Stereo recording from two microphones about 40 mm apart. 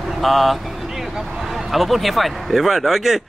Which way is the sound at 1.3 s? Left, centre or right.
Centre.